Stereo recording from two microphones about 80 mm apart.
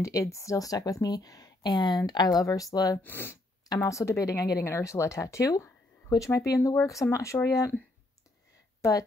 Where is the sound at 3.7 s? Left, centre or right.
Left.